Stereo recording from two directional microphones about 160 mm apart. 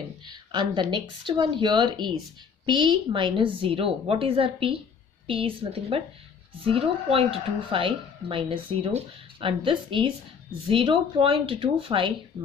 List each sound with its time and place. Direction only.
0.3 s a woman's voice: 30° right (ahead or behind)